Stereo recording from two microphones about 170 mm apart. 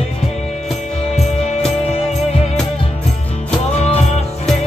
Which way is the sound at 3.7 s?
40° left (ahead or behind).